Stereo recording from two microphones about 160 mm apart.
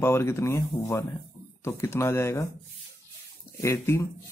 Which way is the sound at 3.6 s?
15° left (ahead or behind).